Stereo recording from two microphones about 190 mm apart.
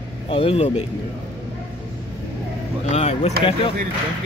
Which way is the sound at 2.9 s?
35° left (ahead or behind).